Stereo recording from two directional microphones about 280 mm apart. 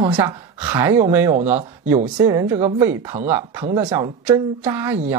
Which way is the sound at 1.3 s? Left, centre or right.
Right.